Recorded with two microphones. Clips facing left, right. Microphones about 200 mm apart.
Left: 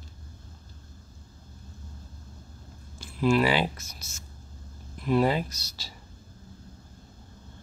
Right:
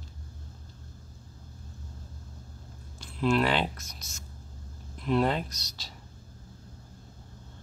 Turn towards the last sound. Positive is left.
turn(degrees=5)  # may be behind; listen again after turning